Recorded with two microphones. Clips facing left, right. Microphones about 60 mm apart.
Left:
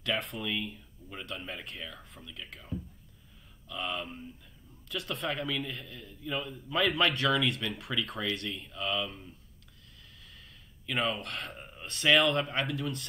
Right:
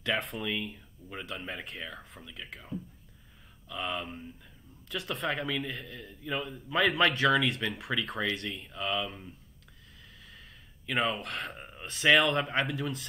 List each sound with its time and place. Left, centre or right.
0.0 s a man's voice: centre
10.9 s a man's voice: centre